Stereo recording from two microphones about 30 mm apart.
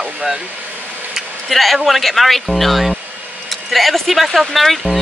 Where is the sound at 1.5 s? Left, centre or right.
Centre.